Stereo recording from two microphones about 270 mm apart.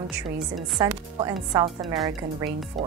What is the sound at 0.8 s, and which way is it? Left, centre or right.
Chopping, centre.